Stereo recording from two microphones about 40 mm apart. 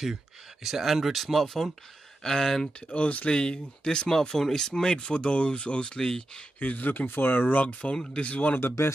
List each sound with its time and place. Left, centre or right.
0.7 s speech: centre
2.9 s speech: left
3.3 s speech: centre
6.6 s speech: left
7.1 s speech: left
7.6 s speech: left
8.5 s speech: left